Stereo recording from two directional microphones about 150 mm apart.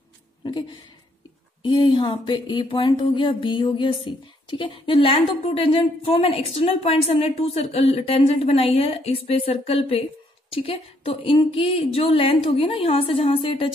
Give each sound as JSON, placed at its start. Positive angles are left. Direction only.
{"t": 0.4, "sound": "speech", "side_deg": 30}